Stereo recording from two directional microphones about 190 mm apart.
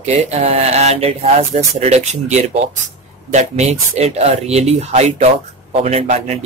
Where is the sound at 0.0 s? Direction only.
35° right (ahead or behind).